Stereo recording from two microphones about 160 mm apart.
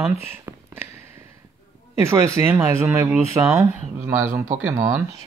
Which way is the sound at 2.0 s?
15° right (ahead or behind).